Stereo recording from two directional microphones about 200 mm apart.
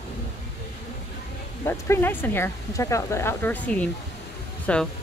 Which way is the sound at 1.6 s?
10° left (ahead or behind).